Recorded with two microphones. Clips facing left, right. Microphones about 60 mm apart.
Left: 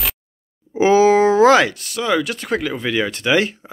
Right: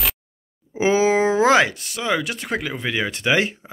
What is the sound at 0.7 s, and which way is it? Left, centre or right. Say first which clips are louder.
Speech: left 5 dB; centre.